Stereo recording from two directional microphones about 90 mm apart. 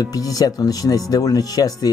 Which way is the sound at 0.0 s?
45° left (ahead or behind).